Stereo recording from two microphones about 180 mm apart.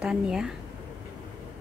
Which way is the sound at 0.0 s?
5° right (ahead or behind).